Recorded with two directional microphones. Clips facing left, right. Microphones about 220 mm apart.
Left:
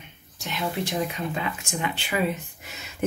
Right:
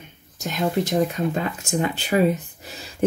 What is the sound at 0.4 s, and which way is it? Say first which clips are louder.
Speech: right 6 dB; 45° right (ahead or behind).